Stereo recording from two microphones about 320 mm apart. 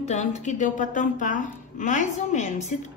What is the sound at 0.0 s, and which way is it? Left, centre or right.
A woman's voice, left.